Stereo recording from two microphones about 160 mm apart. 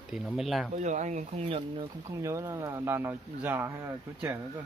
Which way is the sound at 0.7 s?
50° right (ahead or behind).